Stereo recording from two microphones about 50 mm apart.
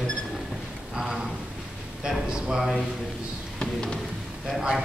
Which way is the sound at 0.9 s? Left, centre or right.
Centre.